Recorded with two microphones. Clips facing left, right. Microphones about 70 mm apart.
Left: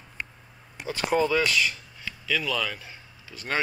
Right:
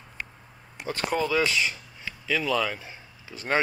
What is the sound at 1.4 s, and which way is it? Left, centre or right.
Speech, centre.